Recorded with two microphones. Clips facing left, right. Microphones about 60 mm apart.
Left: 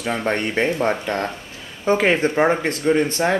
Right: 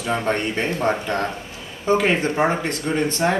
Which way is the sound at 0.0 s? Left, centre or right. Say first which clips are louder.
Even; left.